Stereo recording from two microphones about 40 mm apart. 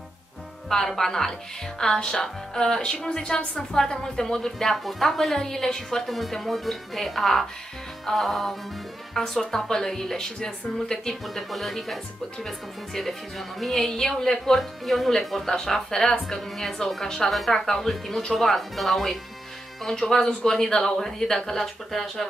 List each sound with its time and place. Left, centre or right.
0.7 s speech: centre
6.0 s speech: centre
11.5 s speech: centre
14.6 s speech: centre
15.4 s speech: centre